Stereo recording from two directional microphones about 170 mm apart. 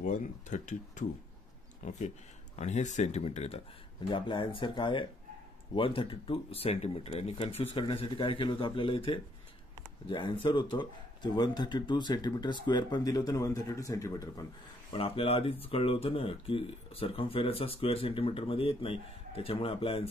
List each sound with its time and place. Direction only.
0.0 s speech: 45° left (ahead or behind); by 14.4 s 20° left (ahead or behind)
14.9 s speech: 35° left (ahead or behind)